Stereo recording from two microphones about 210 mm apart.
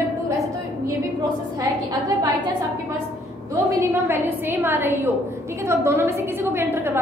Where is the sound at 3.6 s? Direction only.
10° right (ahead or behind).